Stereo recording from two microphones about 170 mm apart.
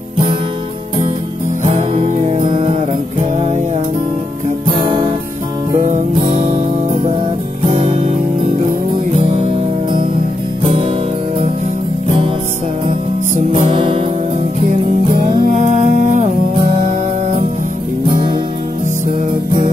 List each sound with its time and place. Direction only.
4.7 s music: 30° right (ahead or behind)
6.1 s music: 30° right (ahead or behind)
7.6 s music: 30° right (ahead or behind)
9.1 s music: 35° right (ahead or behind)
10.6 s music: 30° right (ahead or behind)
13.5 s music: 30° right (ahead or behind)
15.6 s music: 45° right (ahead or behind)
18.0 s music: 25° right (ahead or behind)